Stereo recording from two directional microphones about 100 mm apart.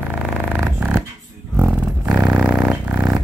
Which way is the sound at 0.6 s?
15° right (ahead or behind).